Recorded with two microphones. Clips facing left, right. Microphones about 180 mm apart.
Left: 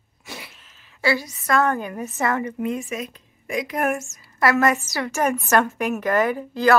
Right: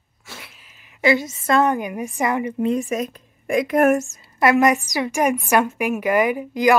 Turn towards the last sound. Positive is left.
turn(degrees=-15)  # may be behind; listen again after turning